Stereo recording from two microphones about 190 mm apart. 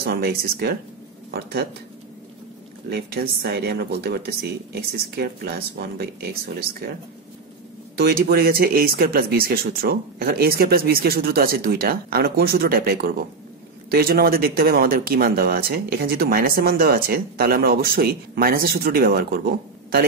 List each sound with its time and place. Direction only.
0.0 s speech: 55° right (ahead or behind)
2.9 s speech: 55° right (ahead or behind)
8.0 s speech: 55° right (ahead or behind)